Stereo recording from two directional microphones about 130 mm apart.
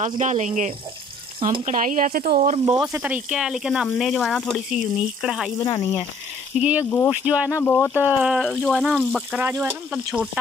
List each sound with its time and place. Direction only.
0.0 s speech: 65° right (ahead or behind)
1.4 s speech: 45° right (ahead or behind)
1.7 s speech: 85° right
2.9 s speech: 10° right (ahead or behind)
5.6 s speech: 25° left (ahead or behind)
6.6 s speech: 10° right (ahead or behind)
7.5 s speech: 15° left (ahead or behind)
7.9 s speech: 10° right (ahead or behind)
8.4 s speech: 5° left (ahead or behind)
9.4 s speech: 15° right (ahead or behind)